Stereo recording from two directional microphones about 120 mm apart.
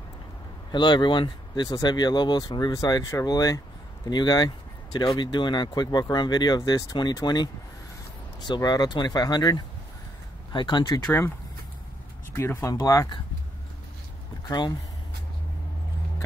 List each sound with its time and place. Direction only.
0.7 s speech: 40° left (ahead or behind)
11.1 s speech: 20° left (ahead or behind)